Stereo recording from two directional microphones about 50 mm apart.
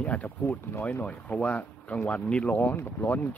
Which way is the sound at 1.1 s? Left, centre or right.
Left.